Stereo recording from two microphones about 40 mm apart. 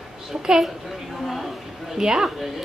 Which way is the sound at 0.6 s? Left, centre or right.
Centre.